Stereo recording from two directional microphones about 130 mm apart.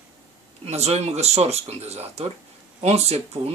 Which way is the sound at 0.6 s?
55° right (ahead or behind).